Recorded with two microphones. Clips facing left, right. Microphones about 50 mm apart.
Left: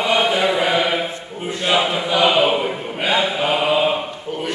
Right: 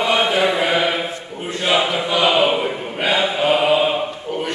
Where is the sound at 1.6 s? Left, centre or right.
Centre.